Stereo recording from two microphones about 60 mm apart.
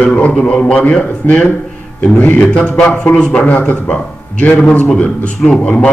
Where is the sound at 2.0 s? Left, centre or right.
Left.